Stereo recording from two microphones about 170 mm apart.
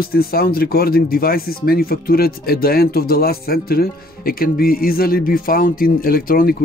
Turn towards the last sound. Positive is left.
turn(degrees=60)  # may be behind; listen again after turning